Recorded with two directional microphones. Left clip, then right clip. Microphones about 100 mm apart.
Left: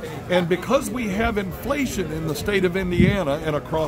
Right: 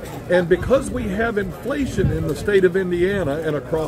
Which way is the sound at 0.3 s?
55° left (ahead or behind).